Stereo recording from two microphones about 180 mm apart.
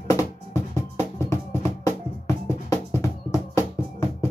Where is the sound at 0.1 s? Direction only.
15° left (ahead or behind).